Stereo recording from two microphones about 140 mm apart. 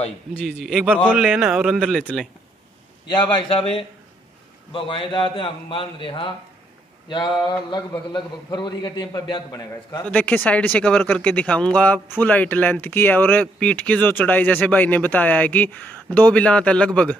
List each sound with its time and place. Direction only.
0.4 s a man's voice: 5° right (ahead or behind)
3.2 s a man's voice: 35° left (ahead or behind)
10.0 s speech: 10° left (ahead or behind)